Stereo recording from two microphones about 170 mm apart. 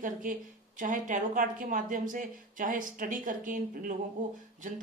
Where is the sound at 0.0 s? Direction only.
50° right (ahead or behind).